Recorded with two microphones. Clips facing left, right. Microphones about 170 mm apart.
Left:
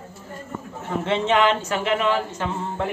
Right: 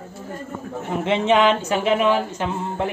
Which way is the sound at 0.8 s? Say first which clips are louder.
Right 3 dB; 15° right (ahead or behind).